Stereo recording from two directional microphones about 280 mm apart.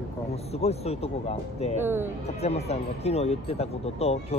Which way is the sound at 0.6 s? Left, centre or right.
Left.